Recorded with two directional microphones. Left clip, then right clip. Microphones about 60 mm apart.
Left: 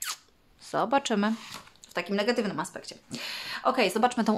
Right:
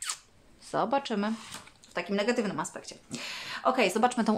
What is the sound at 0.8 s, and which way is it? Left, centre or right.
Speech, left.